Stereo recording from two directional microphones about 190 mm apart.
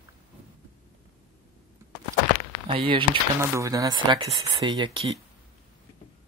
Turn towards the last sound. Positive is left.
turn(degrees=-25)  # may be behind; listen again after turning